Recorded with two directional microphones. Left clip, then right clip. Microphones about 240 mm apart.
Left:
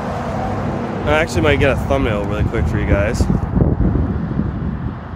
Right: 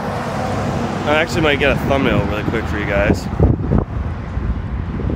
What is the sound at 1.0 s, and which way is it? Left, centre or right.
Speech, centre.